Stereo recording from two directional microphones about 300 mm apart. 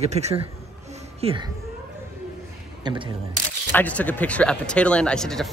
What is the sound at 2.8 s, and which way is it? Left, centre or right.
Speech, centre.